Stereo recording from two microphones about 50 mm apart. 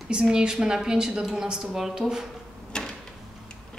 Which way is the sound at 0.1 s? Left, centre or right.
Centre.